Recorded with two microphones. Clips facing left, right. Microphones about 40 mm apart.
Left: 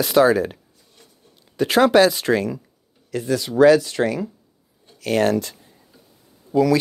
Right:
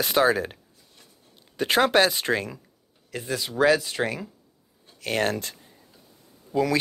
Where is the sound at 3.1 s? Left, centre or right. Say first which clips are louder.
Left 7 dB; centre.